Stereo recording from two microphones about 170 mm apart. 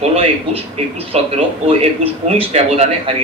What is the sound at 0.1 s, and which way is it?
A man's voice, 35° right (ahead or behind).